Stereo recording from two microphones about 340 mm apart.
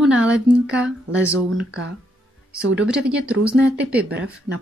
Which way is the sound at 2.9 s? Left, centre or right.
Centre.